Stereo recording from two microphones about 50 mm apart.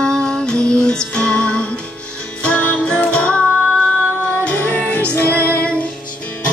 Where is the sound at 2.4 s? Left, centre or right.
Left.